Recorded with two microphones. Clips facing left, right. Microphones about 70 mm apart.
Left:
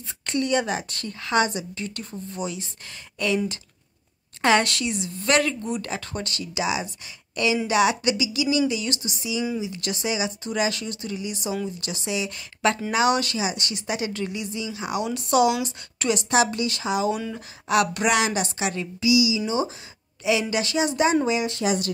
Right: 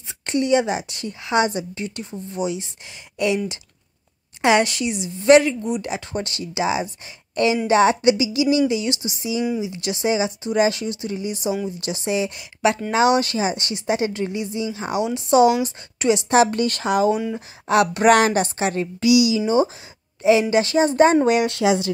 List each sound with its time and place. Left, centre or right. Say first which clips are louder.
0.3 s speech: right 5 dB; right
4.4 s a woman's voice: right 3 dB; centre; by 17.1 s right
17.6 s speech: right 4 dB; right
18.0 s a woman's voice: right 7 dB; right
18.9 s speech: right 4 dB; right
19.4 s a woman's voice: right 7 dB; right
21.3 s speech: right 6 dB; right